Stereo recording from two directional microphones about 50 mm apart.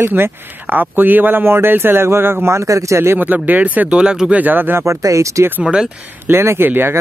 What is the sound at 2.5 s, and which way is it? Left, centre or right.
Speech, right.